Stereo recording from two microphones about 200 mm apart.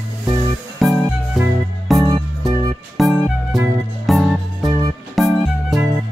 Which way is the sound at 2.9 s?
Centre (ahead or behind).